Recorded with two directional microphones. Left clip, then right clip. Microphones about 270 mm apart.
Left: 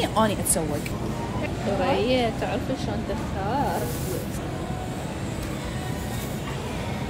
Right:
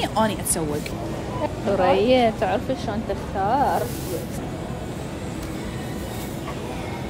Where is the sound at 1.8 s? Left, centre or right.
Right.